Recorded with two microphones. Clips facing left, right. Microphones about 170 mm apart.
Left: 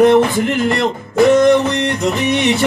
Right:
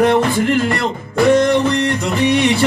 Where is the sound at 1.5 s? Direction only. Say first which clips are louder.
Left 2 dB; 20° left (ahead or behind).